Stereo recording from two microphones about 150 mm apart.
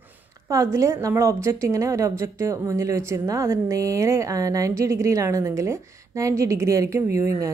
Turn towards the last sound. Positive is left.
turn(degrees=-20)  # may be behind; listen again after turning